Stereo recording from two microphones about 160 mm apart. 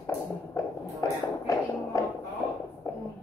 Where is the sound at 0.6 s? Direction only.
20° left (ahead or behind).